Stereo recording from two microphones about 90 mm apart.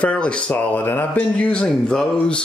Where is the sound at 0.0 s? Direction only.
10° left (ahead or behind).